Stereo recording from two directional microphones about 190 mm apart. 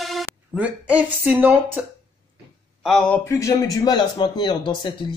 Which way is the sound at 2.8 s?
5° left (ahead or behind).